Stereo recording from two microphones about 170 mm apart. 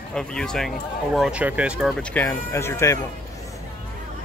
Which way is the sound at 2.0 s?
10° left (ahead or behind).